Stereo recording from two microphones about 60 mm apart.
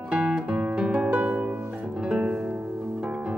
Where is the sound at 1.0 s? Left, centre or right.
Centre.